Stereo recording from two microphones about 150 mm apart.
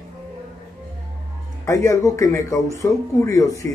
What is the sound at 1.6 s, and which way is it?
Speech, 20° left (ahead or behind).